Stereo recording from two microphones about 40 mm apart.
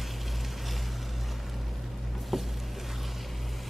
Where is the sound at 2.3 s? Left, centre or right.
Centre.